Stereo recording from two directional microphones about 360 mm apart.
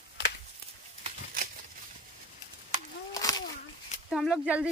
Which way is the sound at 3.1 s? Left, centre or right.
Centre.